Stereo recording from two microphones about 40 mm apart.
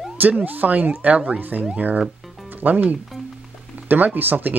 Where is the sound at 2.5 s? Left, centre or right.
Right.